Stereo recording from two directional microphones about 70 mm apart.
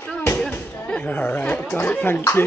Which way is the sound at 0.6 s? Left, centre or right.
Left.